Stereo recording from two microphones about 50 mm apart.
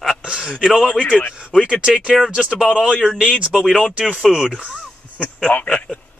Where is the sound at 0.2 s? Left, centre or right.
Centre.